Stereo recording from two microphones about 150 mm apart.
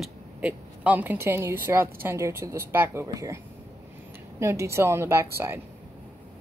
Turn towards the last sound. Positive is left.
turn(degrees=-15)  # may be behind; listen again after turning